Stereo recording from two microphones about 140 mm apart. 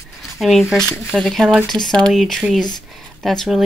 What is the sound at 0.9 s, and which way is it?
Speech, 15° left (ahead or behind).